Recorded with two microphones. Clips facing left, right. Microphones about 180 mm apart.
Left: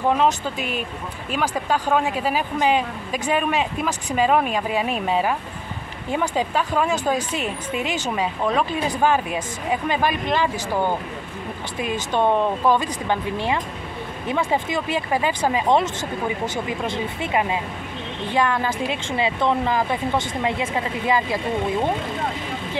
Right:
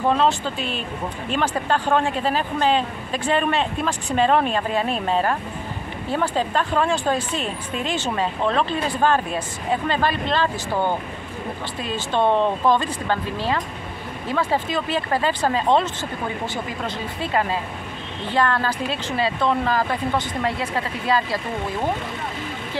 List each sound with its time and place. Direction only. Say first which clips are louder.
0.1 s speech: even; 10° left (ahead or behind)
11.8 s speech: even; 15° left (ahead or behind)